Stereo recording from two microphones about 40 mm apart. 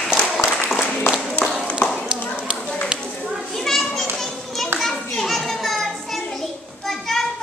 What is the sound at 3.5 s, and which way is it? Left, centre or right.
Children playing, centre.